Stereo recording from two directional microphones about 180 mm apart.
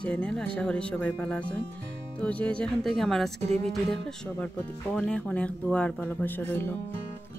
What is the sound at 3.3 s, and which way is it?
Music, 40° right (ahead or behind).